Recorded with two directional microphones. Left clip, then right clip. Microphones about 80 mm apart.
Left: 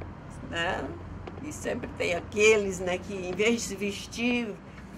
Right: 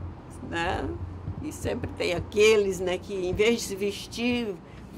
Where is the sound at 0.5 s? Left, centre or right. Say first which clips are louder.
Right 1 dB; left.